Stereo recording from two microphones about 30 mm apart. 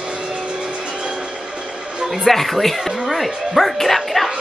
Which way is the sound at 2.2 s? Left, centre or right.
Centre.